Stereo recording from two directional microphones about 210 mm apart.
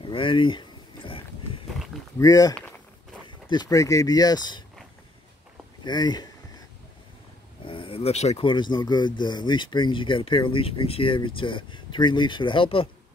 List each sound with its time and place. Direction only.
0.0 s a sound: 25° left (ahead or behind)
2.1 s speech: 15° left (ahead or behind)
5.9 s speech: 20° left (ahead or behind)
7.6 s speech: 25° left (ahead or behind)